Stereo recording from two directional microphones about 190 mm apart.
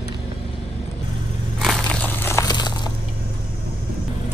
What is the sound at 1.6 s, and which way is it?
Crumpling, 5° left (ahead or behind).